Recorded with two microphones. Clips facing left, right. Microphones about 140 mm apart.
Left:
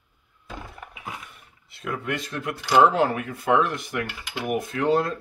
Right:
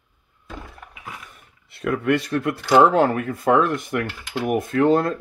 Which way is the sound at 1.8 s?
65° right (ahead or behind).